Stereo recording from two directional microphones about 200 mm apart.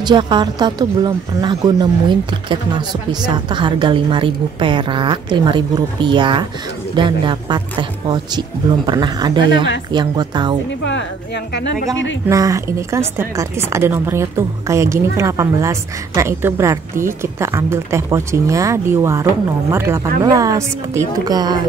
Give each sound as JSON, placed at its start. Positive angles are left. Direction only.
{"t": 0.0, "sound": "speech", "side_deg": -20}
{"t": 12.3, "sound": "speech", "side_deg": -15}